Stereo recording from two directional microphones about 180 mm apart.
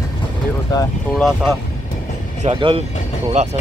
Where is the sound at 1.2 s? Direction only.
Centre (ahead or behind).